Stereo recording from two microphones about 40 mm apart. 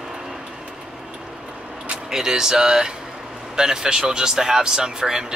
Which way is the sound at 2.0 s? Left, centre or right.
Centre.